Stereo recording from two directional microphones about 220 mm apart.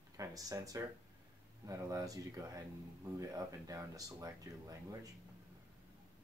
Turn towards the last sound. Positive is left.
turn(degrees=-15)  # may be behind; listen again after turning